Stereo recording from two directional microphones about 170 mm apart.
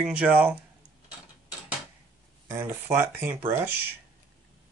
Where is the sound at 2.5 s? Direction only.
15° right (ahead or behind).